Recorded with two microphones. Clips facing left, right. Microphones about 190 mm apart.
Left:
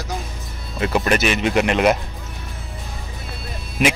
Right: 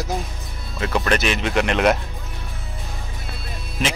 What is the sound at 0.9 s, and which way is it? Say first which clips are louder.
Speech: left 2 dB; 5° left (ahead or behind).